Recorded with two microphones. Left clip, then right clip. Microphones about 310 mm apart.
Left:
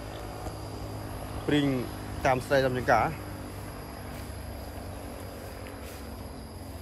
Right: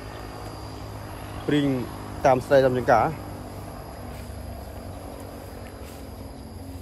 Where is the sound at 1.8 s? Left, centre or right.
Centre.